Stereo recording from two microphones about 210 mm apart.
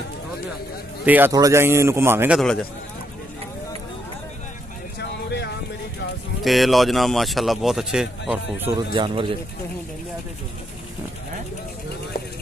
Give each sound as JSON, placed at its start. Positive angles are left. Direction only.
{"t": 1.0, "sound": "a man's voice", "side_deg": -10}
{"t": 4.9, "sound": "a sound", "side_deg": 55}
{"t": 6.4, "sound": "speech", "side_deg": 0}
{"t": 8.9, "sound": "speech", "side_deg": -25}